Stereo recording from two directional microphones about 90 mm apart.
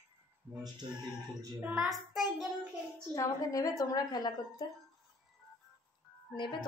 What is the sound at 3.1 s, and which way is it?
A woman's voice, 40° left (ahead or behind).